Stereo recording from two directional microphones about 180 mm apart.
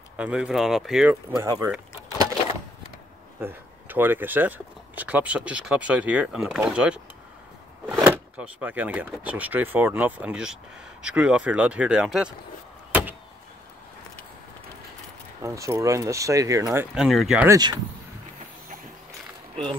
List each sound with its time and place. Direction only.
0.2 s speech: 5° right (ahead or behind)
1.3 s speech: 15° right (ahead or behind)
3.3 s speech: 10° right (ahead or behind)
15.4 s speech: 15° right (ahead or behind)
16.9 s speech: 5° right (ahead or behind)
17.5 s speech: 25° right (ahead or behind)